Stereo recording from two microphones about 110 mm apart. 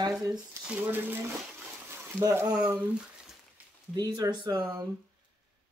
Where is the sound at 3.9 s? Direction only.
40° right (ahead or behind).